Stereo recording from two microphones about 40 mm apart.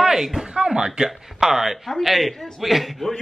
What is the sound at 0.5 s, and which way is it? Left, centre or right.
Speech, right.